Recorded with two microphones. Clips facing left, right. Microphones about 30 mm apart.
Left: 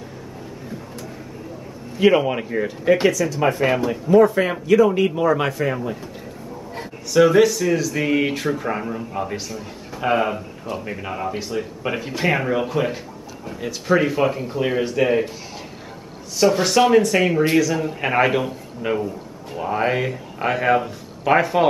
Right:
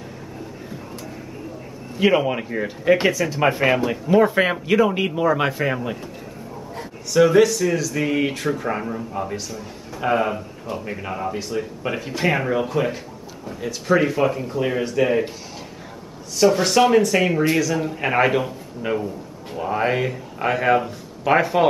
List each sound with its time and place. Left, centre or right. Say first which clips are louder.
2.0 s speech: left 2 dB; centre
3.1 s speech: even; right
3.6 s a man's voice: right 1 dB; centre
4.1 s speech: left 2 dB; right
5.1 s speech: even; centre
5.5 s speech: even; centre
6.8 s speech: left 1 dB; centre
16.3 s speech: even; centre